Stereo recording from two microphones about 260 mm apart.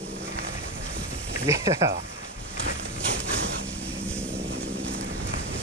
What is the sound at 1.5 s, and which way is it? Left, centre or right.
Speech, centre.